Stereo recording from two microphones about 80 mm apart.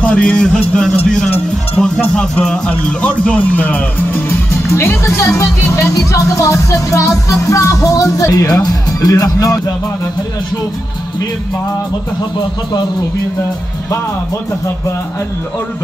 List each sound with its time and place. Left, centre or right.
0.0 s a man's voice: centre; by 5.3 s left
5.4 s music: left